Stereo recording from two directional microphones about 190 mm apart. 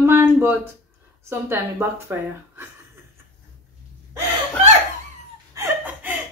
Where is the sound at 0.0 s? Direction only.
10° right (ahead or behind).